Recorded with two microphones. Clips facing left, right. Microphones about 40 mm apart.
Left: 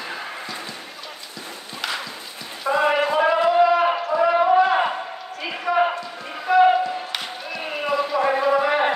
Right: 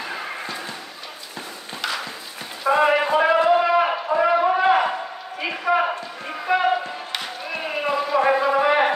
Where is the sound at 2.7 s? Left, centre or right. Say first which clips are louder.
Right 2 dB; right.